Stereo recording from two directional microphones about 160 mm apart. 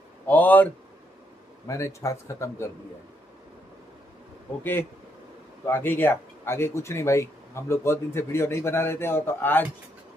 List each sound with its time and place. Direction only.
0.3 s speech: 10° left (ahead or behind)
1.7 s speech: 20° left (ahead or behind)
5.7 s speech: 10° left (ahead or behind)